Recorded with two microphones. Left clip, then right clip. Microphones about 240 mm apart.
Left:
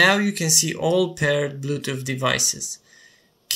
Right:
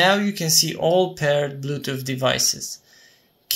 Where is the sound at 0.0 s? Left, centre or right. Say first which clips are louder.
Left 1 dB; centre.